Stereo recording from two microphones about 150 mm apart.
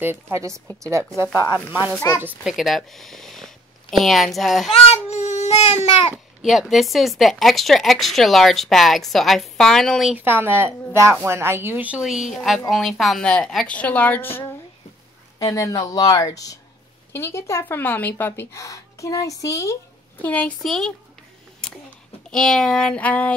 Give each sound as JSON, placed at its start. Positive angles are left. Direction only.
{"t": 0.0, "sound": "a woman's voice", "side_deg": -15}
{"t": 2.0, "sound": "a woman's voice", "side_deg": 15}
{"t": 2.2, "sound": "speech", "side_deg": -5}
{"t": 4.9, "sound": "speech", "side_deg": 50}
{"t": 6.1, "sound": "speech", "side_deg": 0}
{"t": 10.1, "sound": "a woman's voice", "side_deg": -15}
{"t": 21.6, "sound": "a sound", "side_deg": 5}
{"t": 22.3, "sound": "speech", "side_deg": 5}